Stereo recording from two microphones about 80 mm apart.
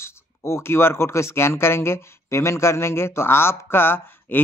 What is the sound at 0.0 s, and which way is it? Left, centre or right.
Speech, left.